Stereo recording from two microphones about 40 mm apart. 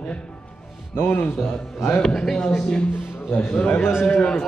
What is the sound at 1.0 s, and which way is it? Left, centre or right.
Speech, left.